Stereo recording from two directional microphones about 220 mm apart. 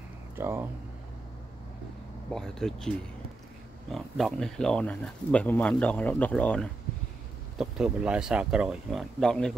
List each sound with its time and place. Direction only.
0.4 s speech: 10° right (ahead or behind)
2.3 s speech: centre (ahead or behind)
3.9 s speech: centre (ahead or behind)